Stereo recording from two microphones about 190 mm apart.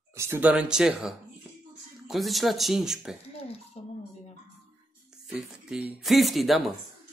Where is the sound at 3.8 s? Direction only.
35° left (ahead or behind).